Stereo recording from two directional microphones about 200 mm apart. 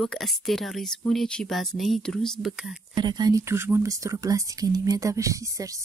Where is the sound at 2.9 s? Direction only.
20° right (ahead or behind).